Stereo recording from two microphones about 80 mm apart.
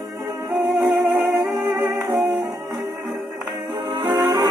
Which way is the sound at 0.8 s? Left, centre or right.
Right.